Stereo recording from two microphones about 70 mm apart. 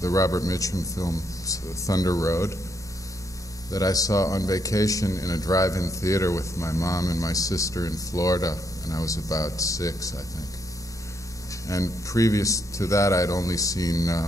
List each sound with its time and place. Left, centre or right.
0.0 s speech: left
3.7 s speech: left
11.6 s speech: left